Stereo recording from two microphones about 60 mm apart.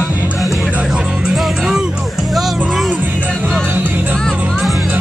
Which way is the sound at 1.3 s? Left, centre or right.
Centre.